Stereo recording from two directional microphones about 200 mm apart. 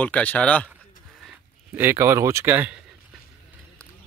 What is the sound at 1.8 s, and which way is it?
Speech, 10° right (ahead or behind).